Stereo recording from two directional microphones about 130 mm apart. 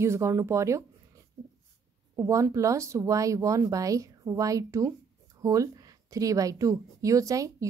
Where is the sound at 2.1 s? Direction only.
25° right (ahead or behind).